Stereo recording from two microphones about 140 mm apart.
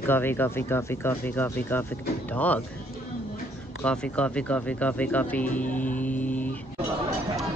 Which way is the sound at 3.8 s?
5° left (ahead or behind).